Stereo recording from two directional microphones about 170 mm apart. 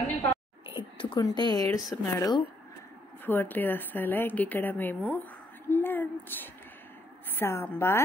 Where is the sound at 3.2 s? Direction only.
10° left (ahead or behind).